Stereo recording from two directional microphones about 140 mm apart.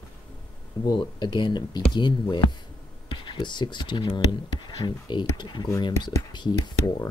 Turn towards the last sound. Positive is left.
turn(degrees=30)  # may be behind; listen again after turning